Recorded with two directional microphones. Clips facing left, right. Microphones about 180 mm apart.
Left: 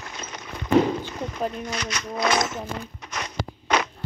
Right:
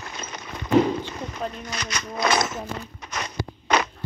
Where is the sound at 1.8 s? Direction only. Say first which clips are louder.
Right 1 dB; 40° right (ahead or behind).